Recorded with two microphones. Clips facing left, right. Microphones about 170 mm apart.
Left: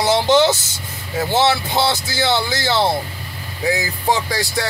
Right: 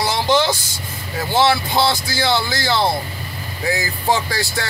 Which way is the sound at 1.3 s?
20° left (ahead or behind).